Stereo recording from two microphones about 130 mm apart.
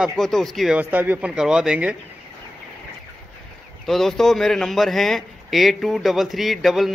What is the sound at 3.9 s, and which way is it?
A man's voice, centre (ahead or behind).